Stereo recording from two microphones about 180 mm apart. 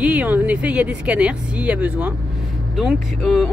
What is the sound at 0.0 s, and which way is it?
Speech, 10° right (ahead or behind).